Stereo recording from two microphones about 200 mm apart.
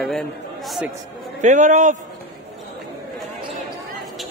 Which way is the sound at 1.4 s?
40° right (ahead or behind).